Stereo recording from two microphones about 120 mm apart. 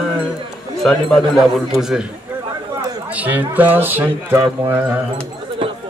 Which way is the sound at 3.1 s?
15° right (ahead or behind).